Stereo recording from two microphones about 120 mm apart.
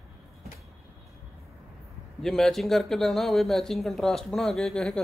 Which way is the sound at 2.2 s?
5° left (ahead or behind).